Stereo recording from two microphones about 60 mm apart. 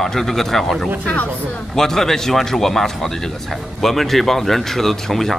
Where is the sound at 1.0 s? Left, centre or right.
Left.